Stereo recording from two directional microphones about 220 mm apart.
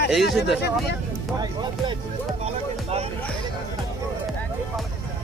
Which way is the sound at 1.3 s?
20° right (ahead or behind).